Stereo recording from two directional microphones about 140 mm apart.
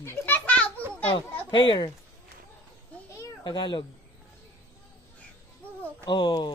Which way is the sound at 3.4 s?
35° left (ahead or behind).